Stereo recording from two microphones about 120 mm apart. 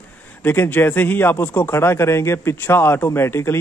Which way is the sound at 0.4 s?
15° left (ahead or behind).